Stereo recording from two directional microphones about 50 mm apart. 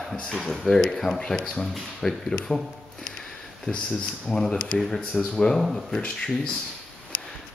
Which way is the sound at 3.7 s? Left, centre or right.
Centre.